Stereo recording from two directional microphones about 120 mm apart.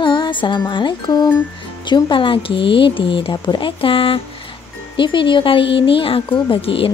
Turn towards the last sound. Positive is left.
turn(degrees=50)  # may be behind; listen again after turning